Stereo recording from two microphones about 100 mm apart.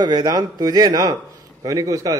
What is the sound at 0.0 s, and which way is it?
A man's voice, 45° right (ahead or behind).